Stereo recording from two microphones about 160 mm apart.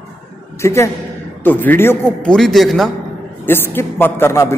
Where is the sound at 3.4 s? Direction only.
15° left (ahead or behind).